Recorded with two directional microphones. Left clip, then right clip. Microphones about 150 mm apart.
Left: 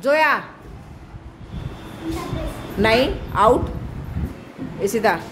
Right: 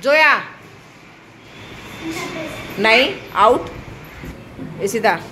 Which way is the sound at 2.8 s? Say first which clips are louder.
Right 4 dB; 20° left (ahead or behind).